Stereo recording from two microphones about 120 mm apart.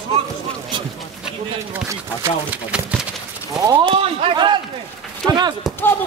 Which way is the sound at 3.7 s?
50° right (ahead or behind).